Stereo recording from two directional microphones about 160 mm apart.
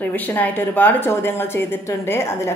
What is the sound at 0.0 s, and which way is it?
A woman's voice, 10° left (ahead or behind).